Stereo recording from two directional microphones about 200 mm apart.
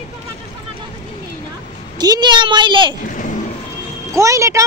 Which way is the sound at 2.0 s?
20° right (ahead or behind).